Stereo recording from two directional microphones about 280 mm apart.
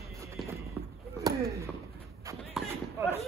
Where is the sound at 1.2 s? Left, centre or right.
Centre.